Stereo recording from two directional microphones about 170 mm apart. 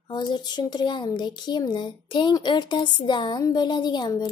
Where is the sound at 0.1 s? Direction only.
25° left (ahead or behind).